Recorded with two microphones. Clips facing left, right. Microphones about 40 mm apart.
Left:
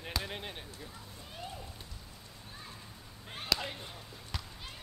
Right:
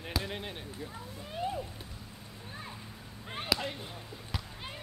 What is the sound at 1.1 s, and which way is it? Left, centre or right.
Speech, centre.